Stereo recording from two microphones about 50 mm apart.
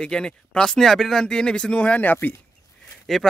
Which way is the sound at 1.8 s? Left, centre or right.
Left.